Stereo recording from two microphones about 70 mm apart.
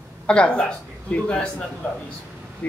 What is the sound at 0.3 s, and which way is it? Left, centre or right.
Speech, centre.